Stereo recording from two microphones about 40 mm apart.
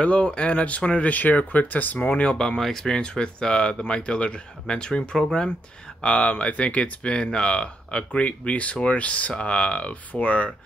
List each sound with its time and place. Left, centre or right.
0.0 s speech: left
2.0 s speech: left
2.3 s speech: centre
3.0 s speech: left